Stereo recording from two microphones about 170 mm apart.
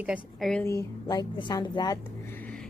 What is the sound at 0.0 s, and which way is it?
Speech, 5° right (ahead or behind).